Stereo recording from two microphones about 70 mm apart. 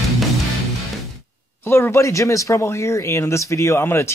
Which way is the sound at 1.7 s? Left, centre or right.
Left.